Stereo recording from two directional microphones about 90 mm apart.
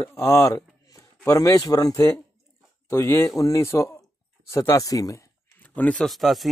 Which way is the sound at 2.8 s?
30° left (ahead or behind).